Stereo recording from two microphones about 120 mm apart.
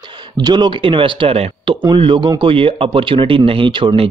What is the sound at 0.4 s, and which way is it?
Speech, 35° right (ahead or behind).